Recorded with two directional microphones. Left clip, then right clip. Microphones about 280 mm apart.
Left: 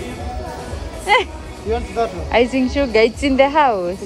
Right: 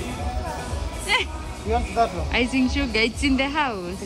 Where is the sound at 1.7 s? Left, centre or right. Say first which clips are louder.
Left 1 dB; right.